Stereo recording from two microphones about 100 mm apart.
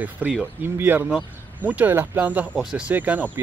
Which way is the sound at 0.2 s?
20° right (ahead or behind).